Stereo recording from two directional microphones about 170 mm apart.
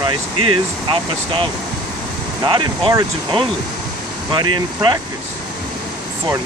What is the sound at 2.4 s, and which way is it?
Speech, 30° right (ahead or behind).